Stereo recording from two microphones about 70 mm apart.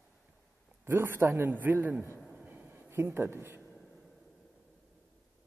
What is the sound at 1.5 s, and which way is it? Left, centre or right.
Speech, right.